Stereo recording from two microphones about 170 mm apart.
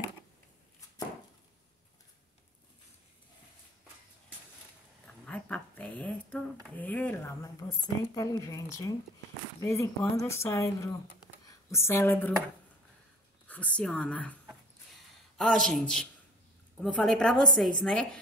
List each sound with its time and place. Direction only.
5.0 s a sound: 5° left (ahead or behind)
7.6 s speech: 20° left (ahead or behind)
13.5 s speech: 5° left (ahead or behind)
15.3 s a woman's voice: 5° left (ahead or behind)